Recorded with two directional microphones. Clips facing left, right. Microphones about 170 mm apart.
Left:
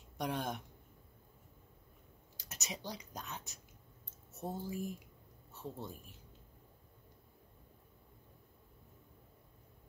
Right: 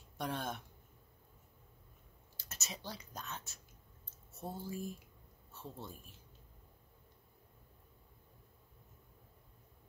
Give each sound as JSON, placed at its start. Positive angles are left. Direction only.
{"t": 0.2, "sound": "speech", "side_deg": 15}
{"t": 2.3, "sound": "a man's voice", "side_deg": 15}